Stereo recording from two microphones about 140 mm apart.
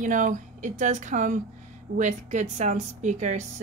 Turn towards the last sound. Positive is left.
turn(degrees=-60)  # may be behind; listen again after turning